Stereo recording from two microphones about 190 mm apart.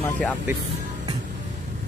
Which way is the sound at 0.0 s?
5° left (ahead or behind).